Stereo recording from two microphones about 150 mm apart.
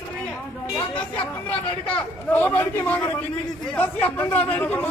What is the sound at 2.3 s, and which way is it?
A man's voice, 10° left (ahead or behind).